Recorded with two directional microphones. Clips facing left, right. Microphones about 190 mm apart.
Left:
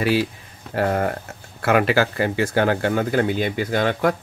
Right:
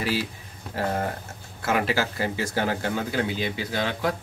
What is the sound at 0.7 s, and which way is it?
Speech, 65° left (ahead or behind).